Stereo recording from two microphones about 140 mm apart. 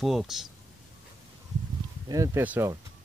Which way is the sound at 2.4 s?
10° right (ahead or behind).